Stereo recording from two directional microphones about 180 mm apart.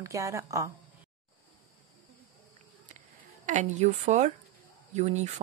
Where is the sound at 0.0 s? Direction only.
15° right (ahead or behind).